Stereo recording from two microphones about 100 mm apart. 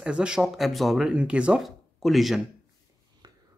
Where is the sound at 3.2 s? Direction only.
45° right (ahead or behind).